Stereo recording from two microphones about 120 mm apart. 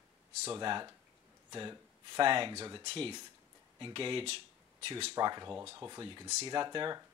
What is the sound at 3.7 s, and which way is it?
Speech, 45° right (ahead or behind).